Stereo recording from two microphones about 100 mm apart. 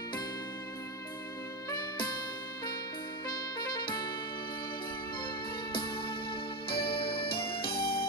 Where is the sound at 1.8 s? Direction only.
45° left (ahead or behind).